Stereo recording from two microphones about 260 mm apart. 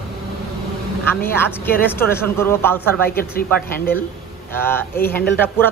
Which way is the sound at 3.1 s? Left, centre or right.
Left.